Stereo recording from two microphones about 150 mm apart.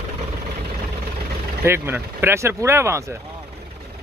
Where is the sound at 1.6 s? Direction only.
15° right (ahead or behind).